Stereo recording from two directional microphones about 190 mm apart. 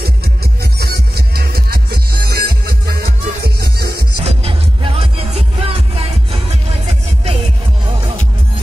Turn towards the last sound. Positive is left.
turn(degrees=-35)  # may be behind; listen again after turning